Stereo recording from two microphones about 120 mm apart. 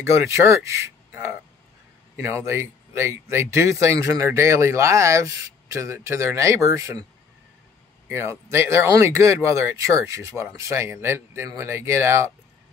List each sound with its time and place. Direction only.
0.0 s speech: 25° right (ahead or behind)
8.1 s speech: 20° right (ahead or behind)